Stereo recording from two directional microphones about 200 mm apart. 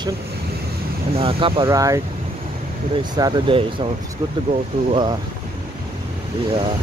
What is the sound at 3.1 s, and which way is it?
Speech, 20° right (ahead or behind).